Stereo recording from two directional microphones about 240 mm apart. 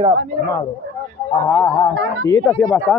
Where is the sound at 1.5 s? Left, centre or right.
Centre.